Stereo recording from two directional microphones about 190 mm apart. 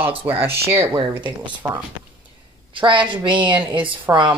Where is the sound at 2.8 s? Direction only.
25° right (ahead or behind).